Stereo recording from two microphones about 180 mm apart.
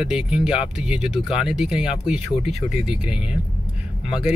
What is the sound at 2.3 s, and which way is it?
Speech, 35° left (ahead or behind).